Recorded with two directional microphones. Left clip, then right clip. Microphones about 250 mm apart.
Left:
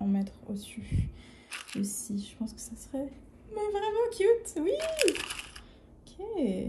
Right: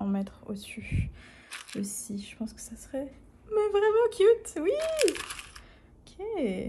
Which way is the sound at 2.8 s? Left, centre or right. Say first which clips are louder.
Right 1 dB; right.